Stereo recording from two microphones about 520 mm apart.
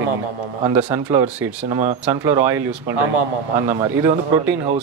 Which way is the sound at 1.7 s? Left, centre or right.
Centre.